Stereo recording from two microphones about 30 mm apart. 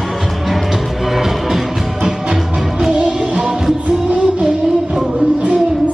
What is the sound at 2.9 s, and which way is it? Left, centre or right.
Music, right.